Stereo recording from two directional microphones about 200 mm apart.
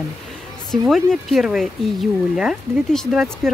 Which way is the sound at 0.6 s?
Centre (ahead or behind).